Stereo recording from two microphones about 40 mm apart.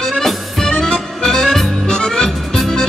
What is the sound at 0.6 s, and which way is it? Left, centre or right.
Accordion, centre.